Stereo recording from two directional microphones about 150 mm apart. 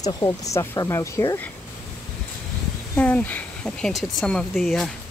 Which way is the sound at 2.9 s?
10° left (ahead or behind).